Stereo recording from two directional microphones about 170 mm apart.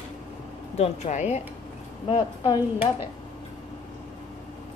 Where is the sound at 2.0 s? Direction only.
30° left (ahead or behind).